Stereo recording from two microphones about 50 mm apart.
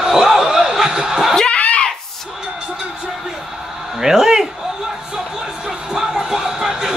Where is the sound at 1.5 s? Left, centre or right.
Left.